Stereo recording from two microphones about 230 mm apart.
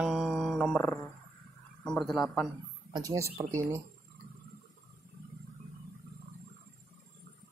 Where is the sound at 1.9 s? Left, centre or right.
Centre.